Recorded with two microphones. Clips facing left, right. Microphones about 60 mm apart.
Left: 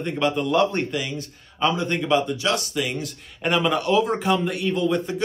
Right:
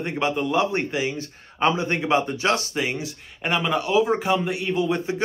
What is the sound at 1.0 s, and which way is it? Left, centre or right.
Speech, right.